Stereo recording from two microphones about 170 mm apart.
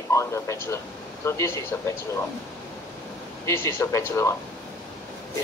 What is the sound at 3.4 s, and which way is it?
Speech, 15° left (ahead or behind).